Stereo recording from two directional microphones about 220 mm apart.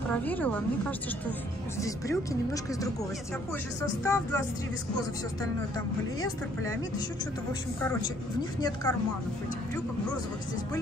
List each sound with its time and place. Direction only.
0.1 s speech: 5° left (ahead or behind)
7.8 s speech: 15° left (ahead or behind)